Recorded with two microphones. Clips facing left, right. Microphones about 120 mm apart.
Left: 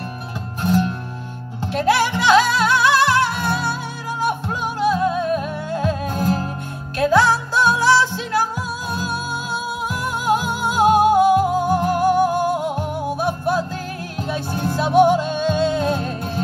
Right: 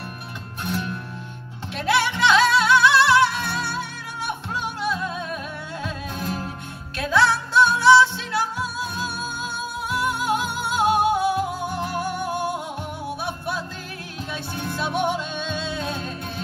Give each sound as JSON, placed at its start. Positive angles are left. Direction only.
{"t": 0.6, "sound": "music", "side_deg": 40}